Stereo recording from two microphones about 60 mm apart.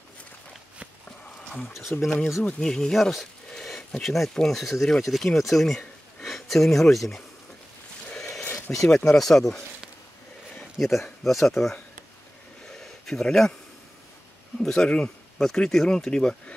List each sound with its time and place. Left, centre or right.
1.9 s speech: left
2.6 s speech: centre
8.5 s a sound: left
8.9 s speech: centre
10.8 s speech: centre
12.6 s a sound: centre
14.6 s speech: centre